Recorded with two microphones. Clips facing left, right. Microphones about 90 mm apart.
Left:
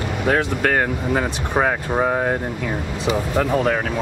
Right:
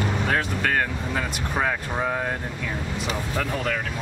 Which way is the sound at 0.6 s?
30° left (ahead or behind).